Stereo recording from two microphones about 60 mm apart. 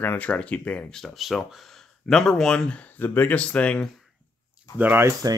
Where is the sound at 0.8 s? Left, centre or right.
Centre.